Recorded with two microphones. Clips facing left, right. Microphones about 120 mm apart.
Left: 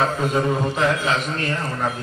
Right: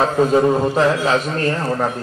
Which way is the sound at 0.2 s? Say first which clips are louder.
Right 7 dB; 35° right (ahead or behind).